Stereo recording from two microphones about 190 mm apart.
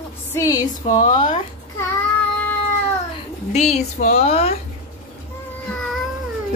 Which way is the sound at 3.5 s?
35° left (ahead or behind).